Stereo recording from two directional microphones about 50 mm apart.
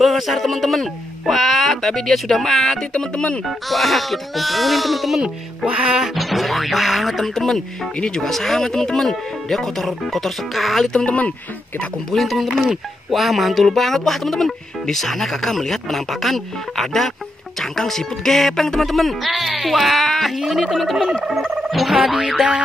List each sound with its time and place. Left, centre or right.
0.0 s speech: centre
2.9 s speech: left
3.4 s speech: centre
5.9 s music: centre
6.1 s speech: centre
8.3 s speech: centre
11.1 s speech: left
12.1 s speech: centre